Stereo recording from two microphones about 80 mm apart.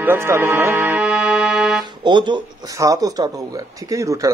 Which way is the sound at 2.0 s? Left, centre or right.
Right.